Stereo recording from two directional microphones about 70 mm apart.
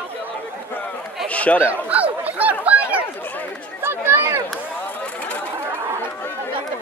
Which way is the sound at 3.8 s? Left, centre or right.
Right.